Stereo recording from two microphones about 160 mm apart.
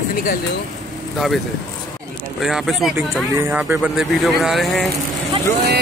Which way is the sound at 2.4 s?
Centre (ahead or behind).